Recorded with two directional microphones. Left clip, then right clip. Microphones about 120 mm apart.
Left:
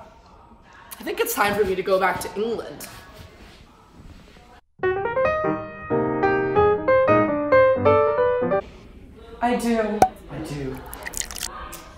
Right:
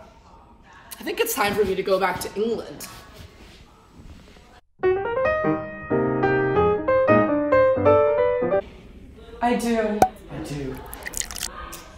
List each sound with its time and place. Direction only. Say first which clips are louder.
0.8 s a woman's voice: even; 20° left (ahead or behind)
4.7 s piano: even; 5° right (ahead or behind)
9.4 s speech: even; centre (ahead or behind)
10.9 s a sound: even; centre (ahead or behind)